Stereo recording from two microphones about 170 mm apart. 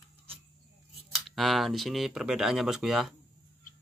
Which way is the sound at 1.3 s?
Centre (ahead or behind).